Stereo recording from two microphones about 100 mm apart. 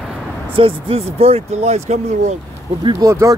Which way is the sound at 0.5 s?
70° right (ahead or behind).